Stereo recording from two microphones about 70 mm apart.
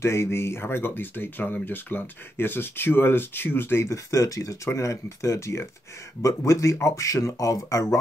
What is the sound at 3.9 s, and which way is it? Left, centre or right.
Speech, left.